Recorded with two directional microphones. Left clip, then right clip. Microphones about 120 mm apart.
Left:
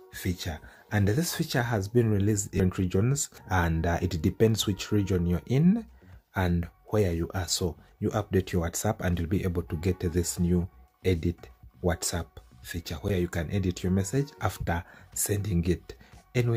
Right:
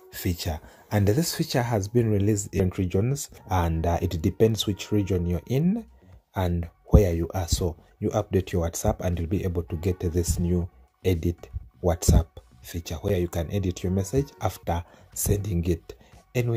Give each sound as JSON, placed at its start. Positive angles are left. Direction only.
{"t": 0.1, "sound": "speech", "side_deg": -45}
{"t": 7.2, "sound": "speech", "side_deg": -20}